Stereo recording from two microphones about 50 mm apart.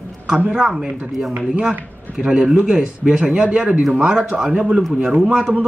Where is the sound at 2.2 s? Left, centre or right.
Centre.